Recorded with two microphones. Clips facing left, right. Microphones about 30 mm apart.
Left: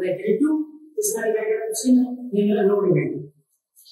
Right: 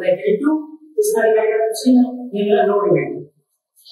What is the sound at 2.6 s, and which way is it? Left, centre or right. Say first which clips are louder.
Speech: right 4 dB; right.